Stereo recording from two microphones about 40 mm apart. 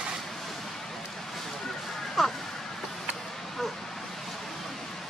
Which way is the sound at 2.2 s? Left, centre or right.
Centre.